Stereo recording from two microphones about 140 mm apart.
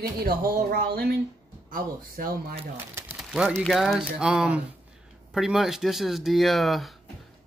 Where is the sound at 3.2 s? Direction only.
5° right (ahead or behind).